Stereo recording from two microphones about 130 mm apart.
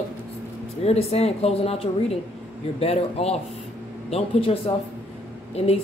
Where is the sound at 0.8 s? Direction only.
55° left (ahead or behind).